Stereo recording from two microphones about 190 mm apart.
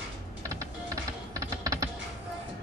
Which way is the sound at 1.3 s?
20° right (ahead or behind).